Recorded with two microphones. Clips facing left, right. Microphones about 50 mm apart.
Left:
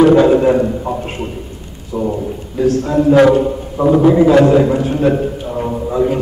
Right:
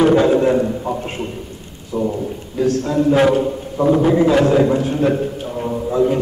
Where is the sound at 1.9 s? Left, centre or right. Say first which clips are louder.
Left 2 dB; centre.